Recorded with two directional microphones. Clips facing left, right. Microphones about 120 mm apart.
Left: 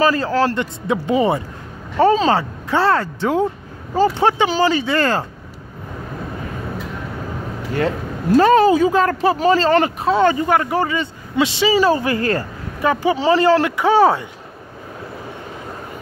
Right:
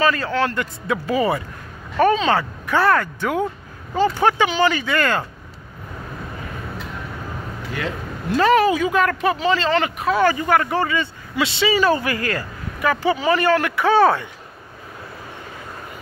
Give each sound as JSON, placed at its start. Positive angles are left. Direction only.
{"t": 0.0, "sound": "speech", "side_deg": 30}
{"t": 7.7, "sound": "speech", "side_deg": 40}
{"t": 9.4, "sound": "speech", "side_deg": 40}
{"t": 13.7, "sound": "speech", "side_deg": 15}